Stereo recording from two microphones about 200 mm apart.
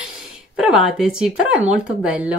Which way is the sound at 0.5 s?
5° right (ahead or behind).